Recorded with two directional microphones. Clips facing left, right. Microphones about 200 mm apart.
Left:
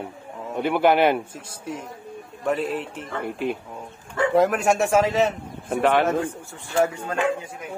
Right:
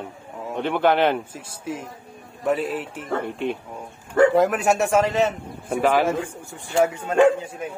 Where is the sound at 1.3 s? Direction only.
5° right (ahead or behind).